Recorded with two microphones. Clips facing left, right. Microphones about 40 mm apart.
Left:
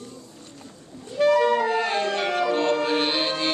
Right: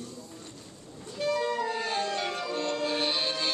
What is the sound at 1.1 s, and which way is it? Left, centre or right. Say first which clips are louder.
Music: left 10 dB; left.